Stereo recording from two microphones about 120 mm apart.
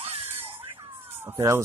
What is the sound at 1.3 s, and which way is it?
Police car, 30° right (ahead or behind).